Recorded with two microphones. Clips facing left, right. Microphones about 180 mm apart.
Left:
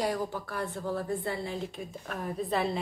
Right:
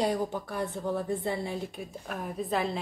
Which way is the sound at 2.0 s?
5° right (ahead or behind).